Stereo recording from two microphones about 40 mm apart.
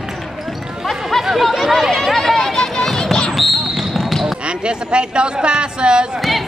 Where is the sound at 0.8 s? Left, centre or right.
Centre.